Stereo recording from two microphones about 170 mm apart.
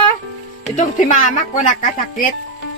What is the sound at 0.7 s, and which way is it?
A woman's voice, 45° left (ahead or behind).